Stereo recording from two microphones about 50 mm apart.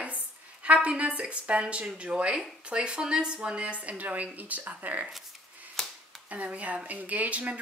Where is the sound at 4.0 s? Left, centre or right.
Right.